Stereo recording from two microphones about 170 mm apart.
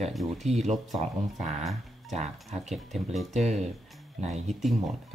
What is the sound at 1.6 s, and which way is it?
Speech, centre (ahead or behind).